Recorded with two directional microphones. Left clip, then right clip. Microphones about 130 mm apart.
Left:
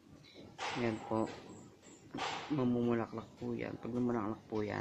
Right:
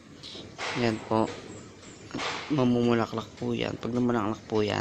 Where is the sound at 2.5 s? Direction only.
10° right (ahead or behind).